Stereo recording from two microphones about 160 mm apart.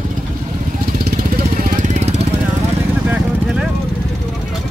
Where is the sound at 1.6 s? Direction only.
50° right (ahead or behind).